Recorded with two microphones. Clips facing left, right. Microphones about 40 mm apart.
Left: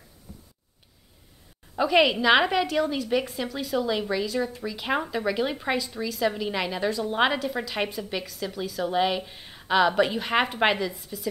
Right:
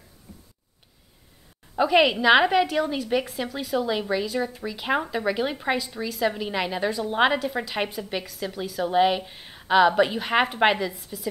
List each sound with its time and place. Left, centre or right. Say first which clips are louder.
1.8 s a woman's voice: right 1 dB; centre